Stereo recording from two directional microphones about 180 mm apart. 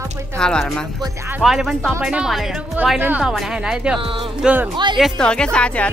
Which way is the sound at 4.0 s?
30° right (ahead or behind).